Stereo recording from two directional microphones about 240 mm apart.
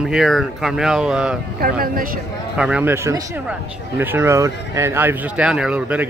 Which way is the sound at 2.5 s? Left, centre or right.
Centre.